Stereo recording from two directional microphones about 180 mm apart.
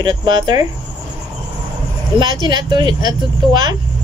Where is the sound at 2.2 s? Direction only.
25° right (ahead or behind).